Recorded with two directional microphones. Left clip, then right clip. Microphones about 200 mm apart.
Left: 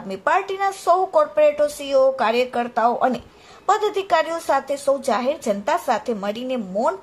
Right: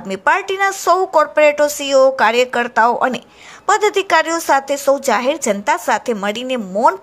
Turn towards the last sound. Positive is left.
turn(degrees=-20)  # may be behind; listen again after turning